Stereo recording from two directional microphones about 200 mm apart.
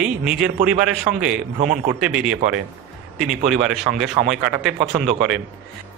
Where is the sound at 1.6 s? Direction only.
40° right (ahead or behind).